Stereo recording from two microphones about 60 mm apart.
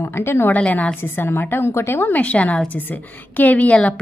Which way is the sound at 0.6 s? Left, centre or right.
Centre.